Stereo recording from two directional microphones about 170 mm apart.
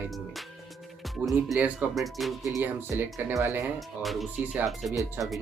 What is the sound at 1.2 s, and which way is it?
Speech, 5° right (ahead or behind).